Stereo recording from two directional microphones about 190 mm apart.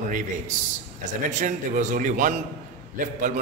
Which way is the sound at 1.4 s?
40° right (ahead or behind).